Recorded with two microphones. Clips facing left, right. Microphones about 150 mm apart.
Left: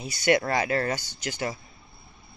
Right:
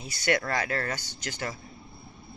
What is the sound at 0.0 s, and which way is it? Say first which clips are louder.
Speech: left 5 dB; 15° left (ahead or behind).